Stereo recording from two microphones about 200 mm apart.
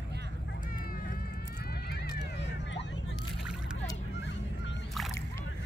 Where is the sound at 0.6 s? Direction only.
45° left (ahead or behind).